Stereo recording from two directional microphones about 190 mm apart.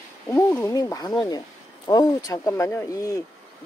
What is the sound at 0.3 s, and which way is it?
Speech, 10° left (ahead or behind).